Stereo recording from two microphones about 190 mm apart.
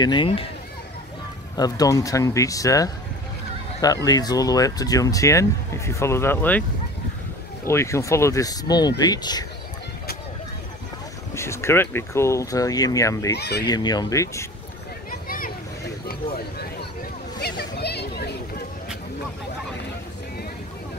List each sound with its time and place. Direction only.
0.0 s speech: 25° left (ahead or behind)
1.6 s speech: 20° left (ahead or behind)
7.6 s speech: 15° left (ahead or behind)
11.3 s speech: 15° left (ahead or behind)
13.3 s speech: 60° left (ahead or behind)
13.7 s speech: 20° left (ahead or behind)
15.0 s a sound: 50° left (ahead or behind)